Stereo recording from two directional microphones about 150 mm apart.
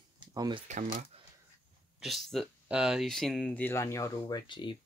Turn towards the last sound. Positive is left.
turn(degrees=30)  # may be behind; listen again after turning